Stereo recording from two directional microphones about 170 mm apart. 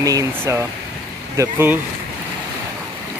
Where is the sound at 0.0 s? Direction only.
20° right (ahead or behind).